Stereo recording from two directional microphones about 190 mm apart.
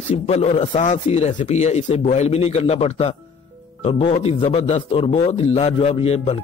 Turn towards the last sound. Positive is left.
turn(degrees=30)  # may be behind; listen again after turning